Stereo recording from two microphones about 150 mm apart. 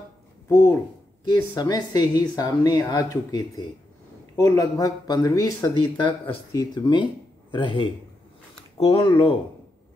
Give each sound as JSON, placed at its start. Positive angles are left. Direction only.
{"t": 0.5, "sound": "speech", "side_deg": 15}